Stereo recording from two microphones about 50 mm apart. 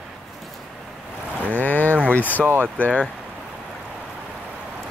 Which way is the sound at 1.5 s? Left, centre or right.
Left.